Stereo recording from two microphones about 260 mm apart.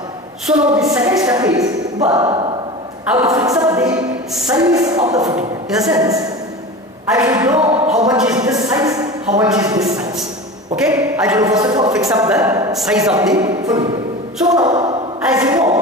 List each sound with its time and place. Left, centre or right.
0.6 s speech: centre
3.1 s speech: centre
3.8 s music: centre
4.5 s speech: centre
5.7 s a woman's voice: centre
5.9 s speech: centre
7.1 s a woman's voice: centre
7.4 s a sound: centre
8.4 s a woman's voice: centre
12.7 s a woman's voice: centre
13.3 s speech: centre